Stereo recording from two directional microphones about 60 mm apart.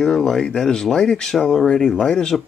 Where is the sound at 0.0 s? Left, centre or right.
Centre.